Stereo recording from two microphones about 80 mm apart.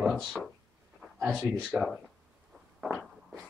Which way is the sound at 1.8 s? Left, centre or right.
Centre.